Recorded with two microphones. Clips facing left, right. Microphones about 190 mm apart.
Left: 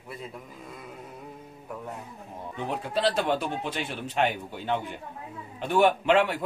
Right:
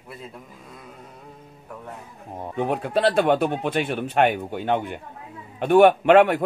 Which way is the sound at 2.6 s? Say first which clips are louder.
Right 6 dB; 55° right (ahead or behind).